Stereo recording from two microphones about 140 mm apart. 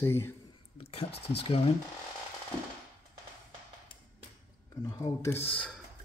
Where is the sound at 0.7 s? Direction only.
45° left (ahead or behind).